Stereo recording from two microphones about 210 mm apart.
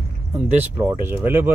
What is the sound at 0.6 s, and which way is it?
Speech, 10° right (ahead or behind).